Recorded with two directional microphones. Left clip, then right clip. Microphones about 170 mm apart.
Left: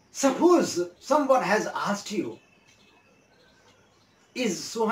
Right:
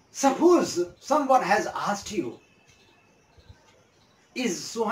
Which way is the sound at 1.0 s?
15° left (ahead or behind).